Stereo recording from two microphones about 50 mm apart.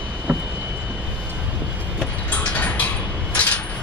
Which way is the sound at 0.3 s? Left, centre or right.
Right.